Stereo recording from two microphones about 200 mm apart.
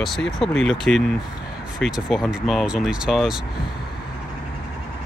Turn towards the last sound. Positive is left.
turn(degrees=0)  # may be behind; listen again after turning